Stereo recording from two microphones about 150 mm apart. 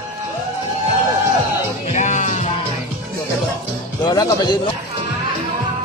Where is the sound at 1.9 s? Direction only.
55° left (ahead or behind).